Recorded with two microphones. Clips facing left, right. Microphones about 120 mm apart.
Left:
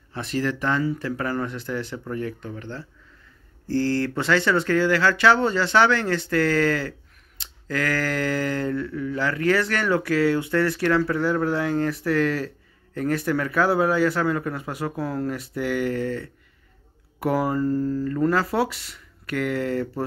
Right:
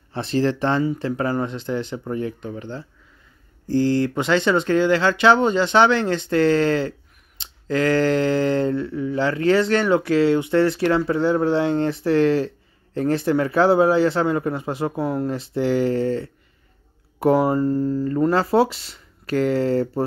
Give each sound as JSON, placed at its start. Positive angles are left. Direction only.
{"t": 0.1, "sound": "speech", "side_deg": -30}